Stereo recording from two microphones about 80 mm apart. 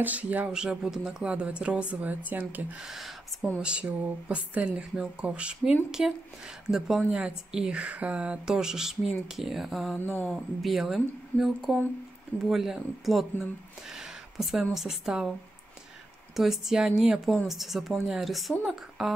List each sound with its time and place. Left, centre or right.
0.0 s speech: centre
0.5 s speech: centre
2.8 s speech: centre
9.9 s speech: left
10.3 s speech: centre
16.3 s speech: centre